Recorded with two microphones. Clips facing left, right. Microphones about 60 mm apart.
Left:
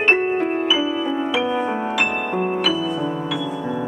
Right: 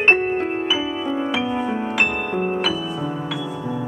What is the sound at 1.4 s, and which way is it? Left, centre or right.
Music, left.